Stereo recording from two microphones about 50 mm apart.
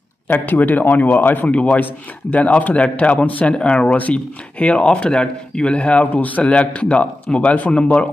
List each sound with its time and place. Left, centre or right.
0.3 s a man's voice: left
3.5 s speech: centre
3.9 s speech: left